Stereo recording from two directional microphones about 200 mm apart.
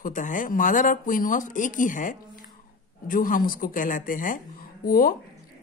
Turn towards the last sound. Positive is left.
turn(degrees=45)  # may be behind; listen again after turning